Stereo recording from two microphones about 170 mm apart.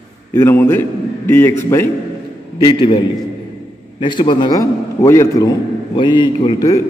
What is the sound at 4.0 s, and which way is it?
A man's voice, 25° left (ahead or behind).